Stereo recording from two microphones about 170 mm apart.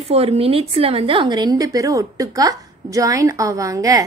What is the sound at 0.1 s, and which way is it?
A woman's voice, 35° right (ahead or behind).